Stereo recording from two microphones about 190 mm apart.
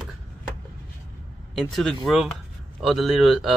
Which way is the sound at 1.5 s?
Centre (ahead or behind).